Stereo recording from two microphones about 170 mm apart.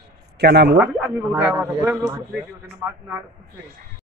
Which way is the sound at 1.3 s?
5° right (ahead or behind).